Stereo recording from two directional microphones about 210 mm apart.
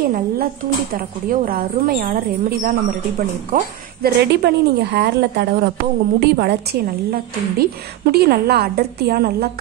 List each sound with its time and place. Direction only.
0.0 s a woman's voice: 45° right (ahead or behind)